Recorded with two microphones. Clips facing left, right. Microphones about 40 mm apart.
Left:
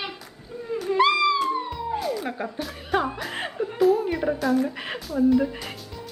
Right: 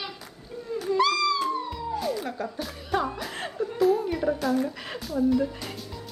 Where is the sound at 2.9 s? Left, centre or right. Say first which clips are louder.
Left 3 dB; centre.